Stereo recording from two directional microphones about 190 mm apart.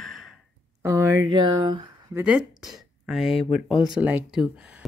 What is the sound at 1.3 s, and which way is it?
Speech, 25° right (ahead or behind).